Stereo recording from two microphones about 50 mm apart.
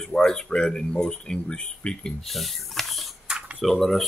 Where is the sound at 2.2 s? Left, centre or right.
Centre.